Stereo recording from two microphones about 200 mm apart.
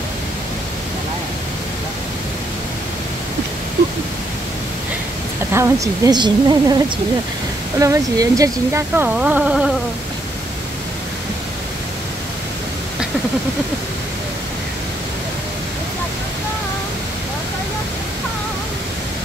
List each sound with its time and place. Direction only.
5.5 s speech: 15° right (ahead or behind)
7.8 s speech: 15° right (ahead or behind)